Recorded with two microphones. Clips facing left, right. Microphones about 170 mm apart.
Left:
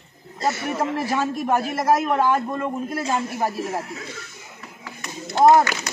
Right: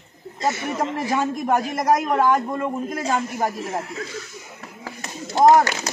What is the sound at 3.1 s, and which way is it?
Speech, 10° left (ahead or behind).